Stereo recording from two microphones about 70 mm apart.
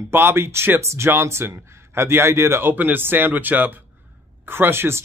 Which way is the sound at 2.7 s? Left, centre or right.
Right.